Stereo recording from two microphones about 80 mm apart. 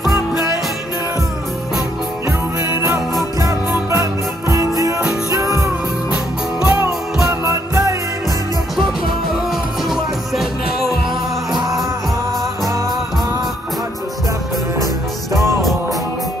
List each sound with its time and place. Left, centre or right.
3.9 s music: right
6.6 s music: centre
7.2 s music: right